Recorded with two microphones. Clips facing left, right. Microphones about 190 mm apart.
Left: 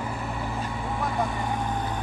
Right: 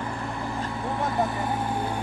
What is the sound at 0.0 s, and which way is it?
Vehicle, 5° left (ahead or behind).